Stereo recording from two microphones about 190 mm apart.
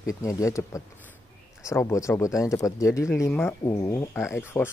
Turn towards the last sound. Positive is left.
turn(degrees=10)  # may be behind; listen again after turning